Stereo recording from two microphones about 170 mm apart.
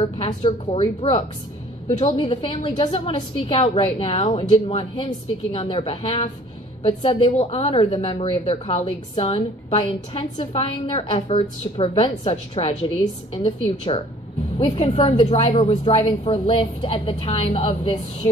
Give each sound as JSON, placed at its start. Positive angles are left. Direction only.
{"t": 0.0, "sound": "a woman's voice", "side_deg": 35}